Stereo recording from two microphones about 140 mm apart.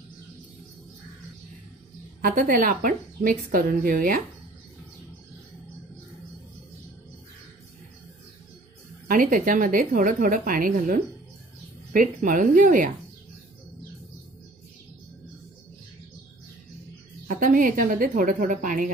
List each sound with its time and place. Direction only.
2.2 s a woman's voice: 75° right (ahead or behind); by 4.2 s 90° right
9.0 s a woman's voice: 75° right (ahead or behind)
17.3 s a woman's voice: 75° right (ahead or behind)